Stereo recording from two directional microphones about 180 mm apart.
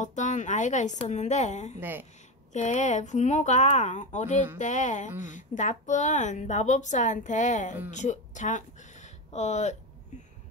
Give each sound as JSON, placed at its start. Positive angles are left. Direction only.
{"t": 0.0, "sound": "speech", "side_deg": 40}
{"t": 1.8, "sound": "speech", "side_deg": -10}
{"t": 2.5, "sound": "a woman's voice", "side_deg": 40}